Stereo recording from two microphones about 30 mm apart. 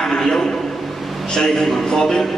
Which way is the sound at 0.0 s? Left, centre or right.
Centre.